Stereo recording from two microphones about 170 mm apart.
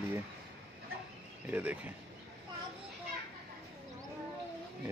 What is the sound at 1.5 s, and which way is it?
Speech, 10° right (ahead or behind).